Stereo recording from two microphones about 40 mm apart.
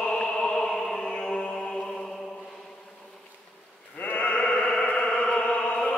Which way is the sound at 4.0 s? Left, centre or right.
Left.